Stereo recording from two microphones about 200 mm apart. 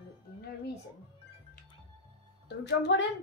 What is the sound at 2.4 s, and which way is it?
Speech, 60° left (ahead or behind).